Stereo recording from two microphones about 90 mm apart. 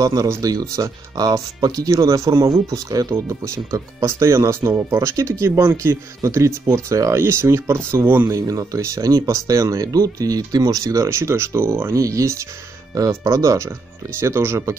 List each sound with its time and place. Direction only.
0.0 s speech: 40° right (ahead or behind); by 8.3 s 25° right (ahead or behind)
8.3 s speech: 40° right (ahead or behind)